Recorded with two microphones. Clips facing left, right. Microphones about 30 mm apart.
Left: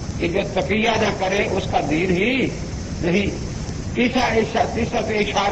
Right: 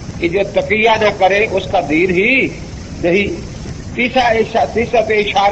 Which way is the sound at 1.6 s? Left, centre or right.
Right.